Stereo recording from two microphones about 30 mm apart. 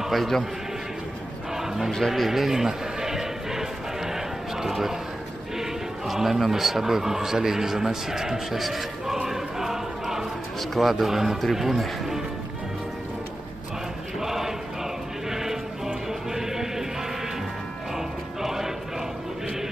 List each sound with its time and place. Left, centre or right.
0.1 s speech: centre
2.0 s a sound: centre
5.6 s speech: centre
8.5 s speech: centre
9.0 s choir: centre
10.7 s speech: centre
14.2 s chant: centre
15.2 s sheep: centre
16.1 s music: centre
17.9 s music: centre